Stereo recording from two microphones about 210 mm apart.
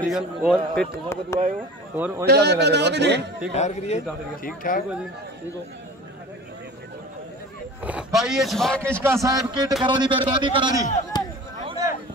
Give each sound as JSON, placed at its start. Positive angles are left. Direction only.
{"t": 0.1, "sound": "speech", "side_deg": -5}
{"t": 0.7, "sound": "speech", "side_deg": 10}
{"t": 2.0, "sound": "a man's voice", "side_deg": -10}
{"t": 2.2, "sound": "a man's voice", "side_deg": -50}
{"t": 3.5, "sound": "a man's voice", "side_deg": 35}
{"t": 7.8, "sound": "speech", "side_deg": -5}
{"t": 9.0, "sound": "a man's voice", "side_deg": -15}
{"t": 11.1, "sound": "a sound", "side_deg": 20}
{"t": 11.6, "sound": "a sound", "side_deg": -20}